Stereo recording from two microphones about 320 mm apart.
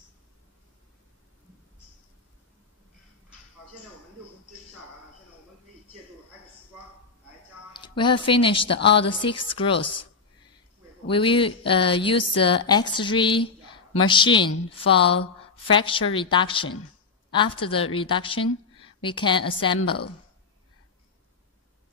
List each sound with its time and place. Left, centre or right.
7.7 s speech: centre
8.7 s a woman's voice: left
9.5 s a woman's voice: centre
11.1 s a woman's voice: centre